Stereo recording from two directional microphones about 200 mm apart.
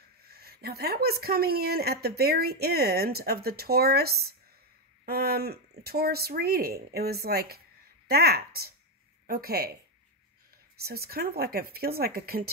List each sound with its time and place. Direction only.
0.2 s speech: 50° right (ahead or behind)
10.8 s speech: 50° right (ahead or behind)